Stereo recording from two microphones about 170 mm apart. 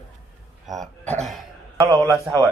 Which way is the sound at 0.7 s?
Centre (ahead or behind).